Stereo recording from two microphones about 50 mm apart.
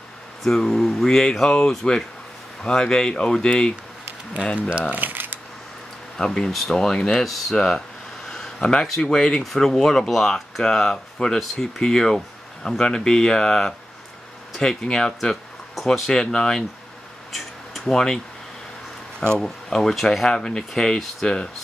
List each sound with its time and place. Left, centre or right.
0.4 s speech: centre
1.0 s speech: centre
4.6 s speech: right
4.9 s a sound: right
6.1 s speech: centre
8.3 s a sound: centre
8.8 s speech: centre
9.4 s speech: centre
15.1 s speech: centre
17.3 s a sound: centre
19.1 s speech: centre